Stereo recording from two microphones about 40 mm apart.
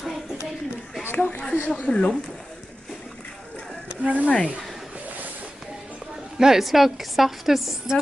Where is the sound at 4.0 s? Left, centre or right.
Right.